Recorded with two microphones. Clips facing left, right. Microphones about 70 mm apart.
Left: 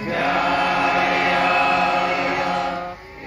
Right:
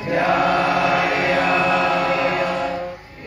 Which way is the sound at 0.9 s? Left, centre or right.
Left.